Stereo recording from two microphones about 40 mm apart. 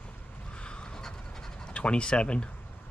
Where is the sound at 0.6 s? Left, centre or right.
Left.